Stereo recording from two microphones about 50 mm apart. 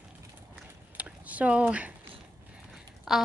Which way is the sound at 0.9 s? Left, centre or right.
Right.